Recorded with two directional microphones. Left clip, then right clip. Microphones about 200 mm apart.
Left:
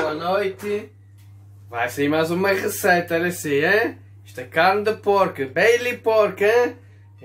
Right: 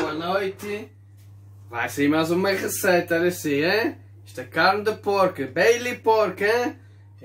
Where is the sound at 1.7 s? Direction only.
5° left (ahead or behind).